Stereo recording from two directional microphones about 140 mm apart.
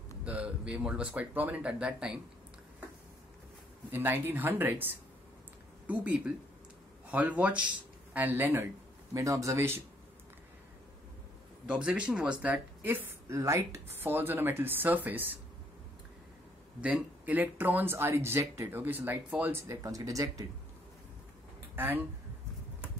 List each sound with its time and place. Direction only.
0.2 s speech: 10° right (ahead or behind)
3.9 s speech: 15° right (ahead or behind)
11.6 s speech: 10° right (ahead or behind)
16.8 s speech: 10° right (ahead or behind)
19.6 s speech: 25° right (ahead or behind)
21.7 s speech: 15° right (ahead or behind)